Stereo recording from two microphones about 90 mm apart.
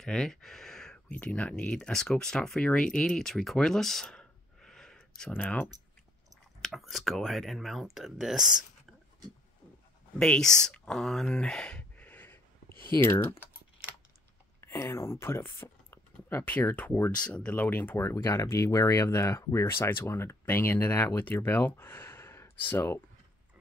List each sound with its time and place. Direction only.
0.0 s a sound: 5° left (ahead or behind)
1.1 s speech: 15° left (ahead or behind)
6.6 s speech: centre (ahead or behind)
10.1 s speech: 10° left (ahead or behind)
12.1 s computer keyboard: 25° left (ahead or behind)
14.6 s speech: 30° left (ahead or behind)
15.6 s a sound: 25° left (ahead or behind)
16.4 s speech: 15° left (ahead or behind)
18.1 s speech: 35° left (ahead or behind)